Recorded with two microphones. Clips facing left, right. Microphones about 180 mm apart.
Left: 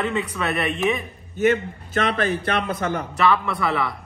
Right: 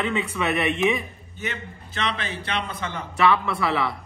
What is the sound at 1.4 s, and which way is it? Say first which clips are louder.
A man's voice: left 14 dB; 50° left (ahead or behind).